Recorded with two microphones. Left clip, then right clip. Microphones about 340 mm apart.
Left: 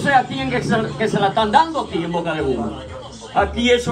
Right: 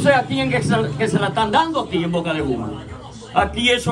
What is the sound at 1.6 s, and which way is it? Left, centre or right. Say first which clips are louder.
Speech: left 1 dB; left.